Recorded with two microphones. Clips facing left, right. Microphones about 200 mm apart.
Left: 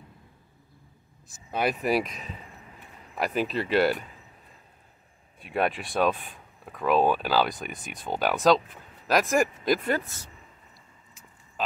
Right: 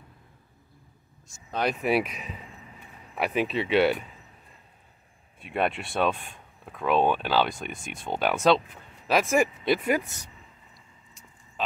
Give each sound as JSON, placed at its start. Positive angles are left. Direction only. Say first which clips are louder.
{"t": 1.5, "sound": "speech", "louder": "even", "side_deg": 5}
{"t": 5.4, "sound": "speech", "louder": "even", "side_deg": 0}
{"t": 9.8, "sound": "speech", "louder": "right 2 dB", "side_deg": -15}